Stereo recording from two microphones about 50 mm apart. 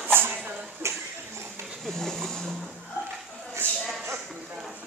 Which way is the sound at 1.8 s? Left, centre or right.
Centre.